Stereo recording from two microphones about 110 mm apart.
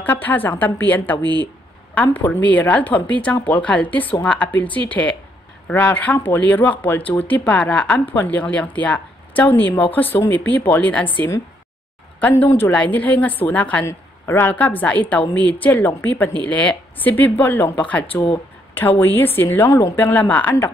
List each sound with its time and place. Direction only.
0.0 s a woman's voice: 15° left (ahead or behind)
1.2 s speech: 45° right (ahead or behind)
2.1 s a woman's voice: 15° left (ahead or behind)
12.2 s a woman's voice: 15° left (ahead or behind)